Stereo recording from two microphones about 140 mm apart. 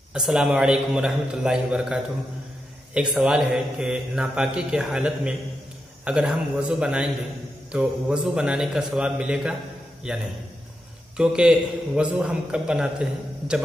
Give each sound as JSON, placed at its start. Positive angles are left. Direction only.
{"t": 0.1, "sound": "a man's voice", "side_deg": -5}